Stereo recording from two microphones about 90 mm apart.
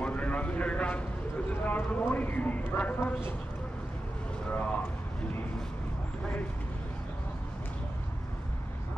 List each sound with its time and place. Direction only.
0.0 s a sound: 15° left (ahead or behind)
1.5 s clip-clop: 20° left (ahead or behind)
4.5 s speech: 15° left (ahead or behind)